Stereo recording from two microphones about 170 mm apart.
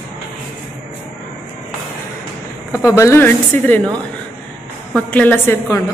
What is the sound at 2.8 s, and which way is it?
A woman's voice, 15° left (ahead or behind).